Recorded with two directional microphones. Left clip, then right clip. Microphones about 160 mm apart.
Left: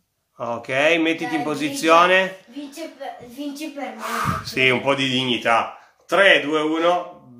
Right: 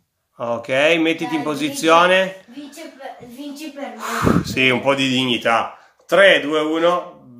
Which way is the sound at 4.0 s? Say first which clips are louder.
Right 5 dB; 25° right (ahead or behind).